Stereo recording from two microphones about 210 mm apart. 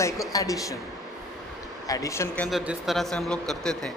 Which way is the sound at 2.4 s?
Centre (ahead or behind).